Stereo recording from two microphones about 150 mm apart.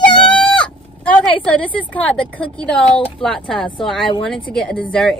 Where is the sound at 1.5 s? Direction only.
10° left (ahead or behind).